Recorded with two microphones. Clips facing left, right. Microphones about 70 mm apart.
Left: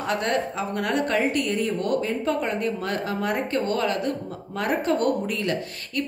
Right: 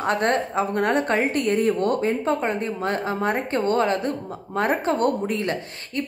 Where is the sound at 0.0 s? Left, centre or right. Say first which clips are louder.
Right 3 dB; right.